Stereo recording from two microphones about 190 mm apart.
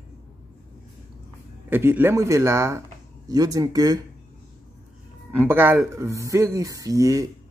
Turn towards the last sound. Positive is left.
turn(degrees=-15)  # may be behind; listen again after turning